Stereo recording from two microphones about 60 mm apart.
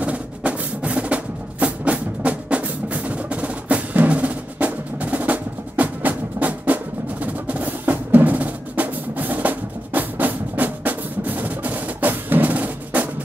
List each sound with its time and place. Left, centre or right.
0.0 s music: right
7.4 s percussion: right